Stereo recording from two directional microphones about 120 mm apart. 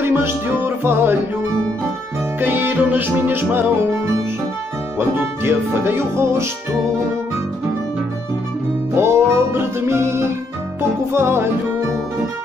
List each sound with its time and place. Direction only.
0.0 s music: 20° right (ahead or behind)
2.4 s music: 15° right (ahead or behind)
8.9 s music: 20° right (ahead or behind)